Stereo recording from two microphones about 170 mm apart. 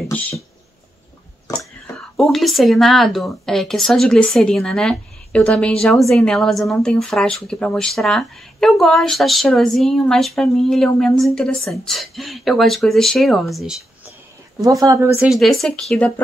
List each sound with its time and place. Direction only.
2.3 s a woman's voice: centre (ahead or behind)
14.6 s speech: 20° right (ahead or behind)
15.2 s a woman's voice: centre (ahead or behind)